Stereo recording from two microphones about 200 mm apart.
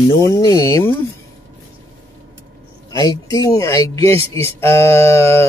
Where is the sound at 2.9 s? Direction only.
20° left (ahead or behind).